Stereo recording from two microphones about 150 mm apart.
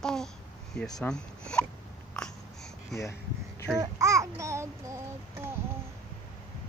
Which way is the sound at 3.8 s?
20° right (ahead or behind).